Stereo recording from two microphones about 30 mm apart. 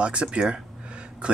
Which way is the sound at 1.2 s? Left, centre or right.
Right.